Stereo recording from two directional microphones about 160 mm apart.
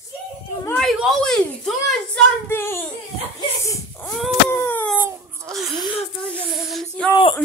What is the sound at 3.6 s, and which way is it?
Wail, 20° left (ahead or behind).